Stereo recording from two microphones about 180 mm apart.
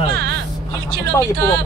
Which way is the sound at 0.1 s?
70° right (ahead or behind).